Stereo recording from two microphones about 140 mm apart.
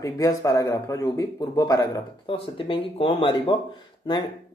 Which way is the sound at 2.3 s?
40° left (ahead or behind).